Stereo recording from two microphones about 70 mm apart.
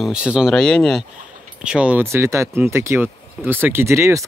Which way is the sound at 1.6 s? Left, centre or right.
Centre.